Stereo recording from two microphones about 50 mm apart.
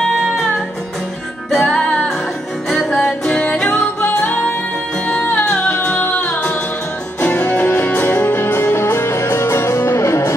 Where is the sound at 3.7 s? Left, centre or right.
Left.